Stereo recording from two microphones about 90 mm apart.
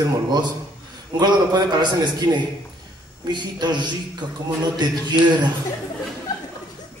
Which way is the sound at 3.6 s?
55° right (ahead or behind).